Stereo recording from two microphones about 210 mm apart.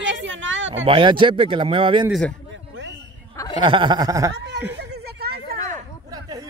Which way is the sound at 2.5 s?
60° right (ahead or behind).